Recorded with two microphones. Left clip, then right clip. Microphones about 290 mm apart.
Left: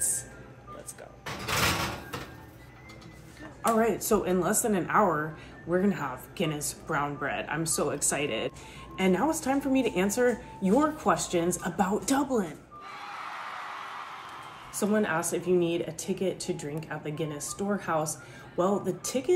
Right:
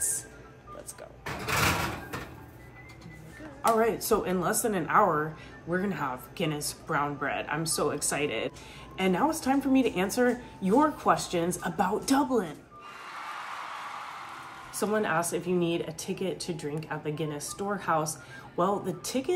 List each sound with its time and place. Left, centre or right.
3.6 s a woman's voice: centre
14.7 s a woman's voice: centre